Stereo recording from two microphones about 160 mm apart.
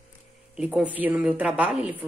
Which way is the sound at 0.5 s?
5° right (ahead or behind).